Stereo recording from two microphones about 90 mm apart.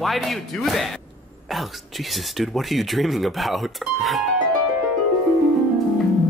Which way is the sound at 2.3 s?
Centre (ahead or behind).